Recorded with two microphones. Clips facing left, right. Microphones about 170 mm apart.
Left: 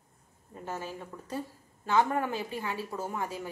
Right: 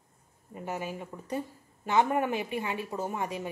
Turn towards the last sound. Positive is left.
turn(degrees=-20)  # may be behind; listen again after turning